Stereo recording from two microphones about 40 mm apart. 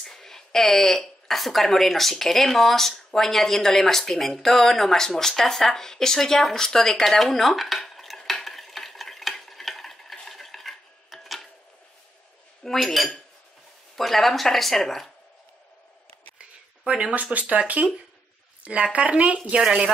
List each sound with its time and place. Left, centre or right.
0.0 s speech: centre
9.3 s stir: centre
12.6 s speech: centre
16.3 s a sound: right
17.1 s speech: right